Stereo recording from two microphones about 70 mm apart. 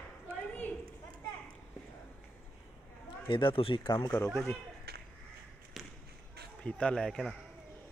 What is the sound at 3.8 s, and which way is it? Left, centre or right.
Speech, left.